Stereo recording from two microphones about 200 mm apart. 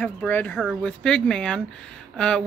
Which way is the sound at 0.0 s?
10° left (ahead or behind).